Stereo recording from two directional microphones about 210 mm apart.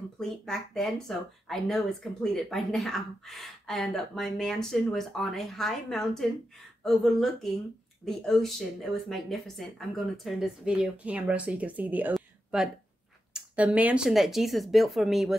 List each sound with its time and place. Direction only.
0.2 s speech: centre (ahead or behind)